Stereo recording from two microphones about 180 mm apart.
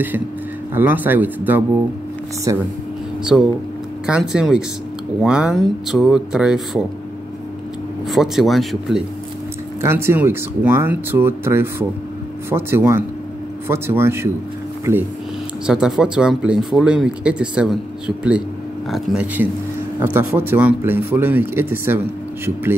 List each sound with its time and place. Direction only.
0.7 s speech: 10° right (ahead or behind)
3.3 s speech: 10° left (ahead or behind)
4.0 s speech: 5° right (ahead or behind)
8.1 s speech: centre (ahead or behind)
9.8 s speech: 15° right (ahead or behind)
15.6 s speech: 5° right (ahead or behind)